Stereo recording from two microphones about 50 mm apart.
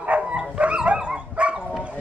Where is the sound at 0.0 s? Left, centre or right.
Right.